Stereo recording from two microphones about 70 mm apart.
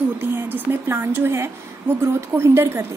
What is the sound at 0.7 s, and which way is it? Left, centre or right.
A woman's voice, right.